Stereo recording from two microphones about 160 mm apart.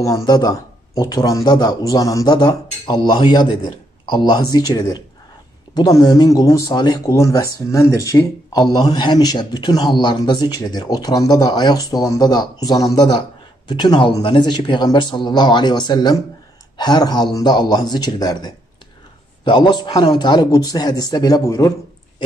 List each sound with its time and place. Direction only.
0.0 s speech: 20° left (ahead or behind)